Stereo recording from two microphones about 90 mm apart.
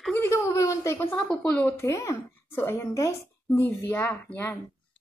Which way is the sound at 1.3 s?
15° left (ahead or behind).